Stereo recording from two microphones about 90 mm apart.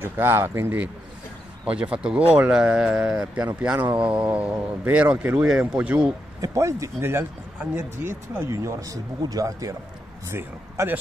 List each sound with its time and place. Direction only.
0.0 s speech: 25° right (ahead or behind)
1.6 s speech: 10° right (ahead or behind)
6.4 s speech: 35° right (ahead or behind)
10.3 s speech: 30° right (ahead or behind)